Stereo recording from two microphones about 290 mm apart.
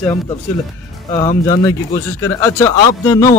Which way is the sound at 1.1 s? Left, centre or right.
Centre.